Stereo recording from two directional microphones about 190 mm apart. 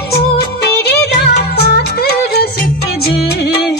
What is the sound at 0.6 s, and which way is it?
Music, 60° left (ahead or behind).